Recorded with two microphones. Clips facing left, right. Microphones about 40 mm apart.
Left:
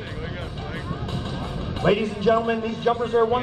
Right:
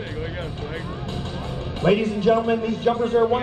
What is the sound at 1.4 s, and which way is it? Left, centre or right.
Music, left.